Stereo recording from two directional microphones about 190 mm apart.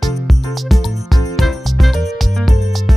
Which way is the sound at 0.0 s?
Centre (ahead or behind).